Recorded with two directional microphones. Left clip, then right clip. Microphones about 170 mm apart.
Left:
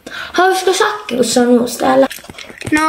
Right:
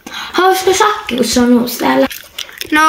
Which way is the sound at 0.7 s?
40° right (ahead or behind).